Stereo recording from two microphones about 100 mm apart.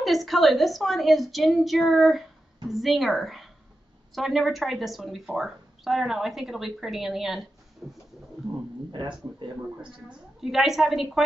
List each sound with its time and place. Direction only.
0.0 s speech: centre (ahead or behind)
8.9 s speech: 50° right (ahead or behind)
10.4 s speech: 5° right (ahead or behind)